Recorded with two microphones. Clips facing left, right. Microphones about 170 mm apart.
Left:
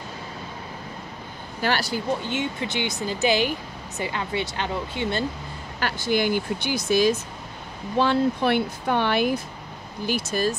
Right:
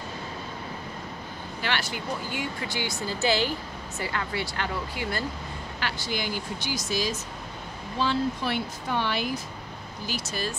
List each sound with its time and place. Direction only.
1.6 s speech: 40° left (ahead or behind)
2.2 s speech: 25° left (ahead or behind)
5.8 s speech: 50° left (ahead or behind)